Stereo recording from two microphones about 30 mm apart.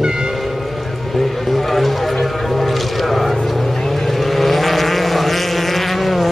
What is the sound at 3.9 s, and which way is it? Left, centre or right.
Vehicle, centre.